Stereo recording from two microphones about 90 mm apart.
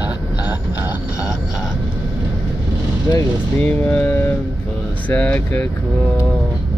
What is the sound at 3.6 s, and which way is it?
Speech, 20° left (ahead or behind).